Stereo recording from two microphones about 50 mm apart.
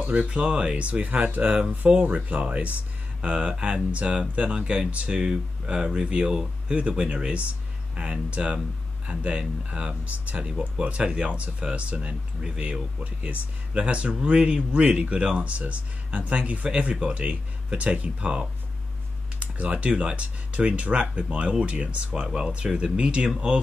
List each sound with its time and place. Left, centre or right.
0.2 s speech: right